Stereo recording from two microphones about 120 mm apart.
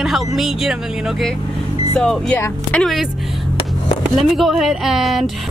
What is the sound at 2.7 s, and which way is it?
Music, centre (ahead or behind).